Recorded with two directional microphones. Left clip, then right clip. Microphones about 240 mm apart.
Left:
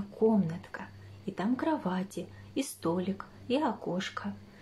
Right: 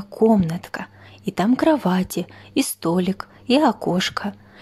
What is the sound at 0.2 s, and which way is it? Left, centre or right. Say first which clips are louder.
A woman's voice: right 10 dB; right.